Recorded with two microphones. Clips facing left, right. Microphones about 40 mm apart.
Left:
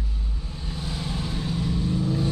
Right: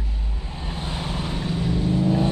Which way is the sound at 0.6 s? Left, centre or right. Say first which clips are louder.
Right 2 dB; right.